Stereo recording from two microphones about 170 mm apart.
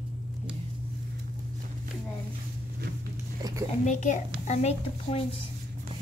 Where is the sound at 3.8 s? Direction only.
45° left (ahead or behind).